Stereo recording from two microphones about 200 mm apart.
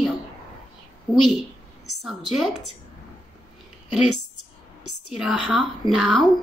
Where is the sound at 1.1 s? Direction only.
5° right (ahead or behind).